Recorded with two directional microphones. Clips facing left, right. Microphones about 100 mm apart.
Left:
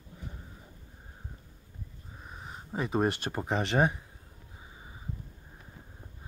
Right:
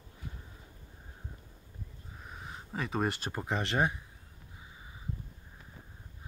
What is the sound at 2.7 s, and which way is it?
Speech, 15° left (ahead or behind).